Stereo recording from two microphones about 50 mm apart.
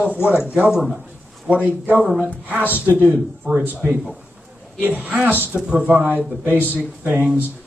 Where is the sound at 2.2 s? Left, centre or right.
Right.